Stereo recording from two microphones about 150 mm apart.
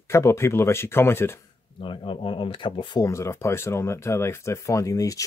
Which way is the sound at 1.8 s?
35° left (ahead or behind).